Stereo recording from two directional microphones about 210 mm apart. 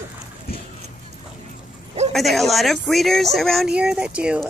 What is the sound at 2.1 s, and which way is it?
Speech, centre (ahead or behind).